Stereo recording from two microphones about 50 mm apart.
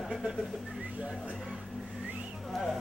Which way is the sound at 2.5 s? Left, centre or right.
Centre.